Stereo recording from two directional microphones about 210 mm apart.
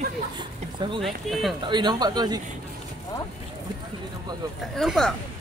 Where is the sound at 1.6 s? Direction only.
20° right (ahead or behind).